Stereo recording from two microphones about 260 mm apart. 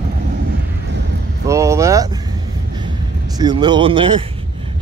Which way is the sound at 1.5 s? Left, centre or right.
Centre.